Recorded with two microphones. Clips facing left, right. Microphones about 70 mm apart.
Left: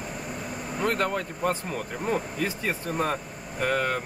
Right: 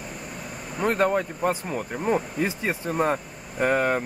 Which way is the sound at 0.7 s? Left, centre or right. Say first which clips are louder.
Right 4 dB; centre.